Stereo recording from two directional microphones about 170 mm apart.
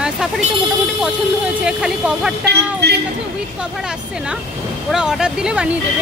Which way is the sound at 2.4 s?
75° right (ahead or behind).